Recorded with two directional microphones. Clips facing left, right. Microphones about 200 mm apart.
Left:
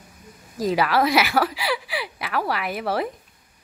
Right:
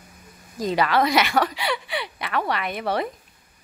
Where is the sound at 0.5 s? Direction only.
5° left (ahead or behind).